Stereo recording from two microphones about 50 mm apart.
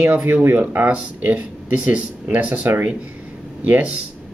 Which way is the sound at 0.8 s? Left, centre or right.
Right.